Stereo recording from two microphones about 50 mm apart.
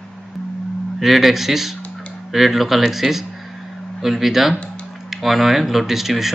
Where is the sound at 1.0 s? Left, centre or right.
Centre.